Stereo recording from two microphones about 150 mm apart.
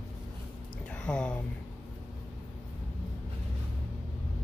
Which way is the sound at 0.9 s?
5° left (ahead or behind).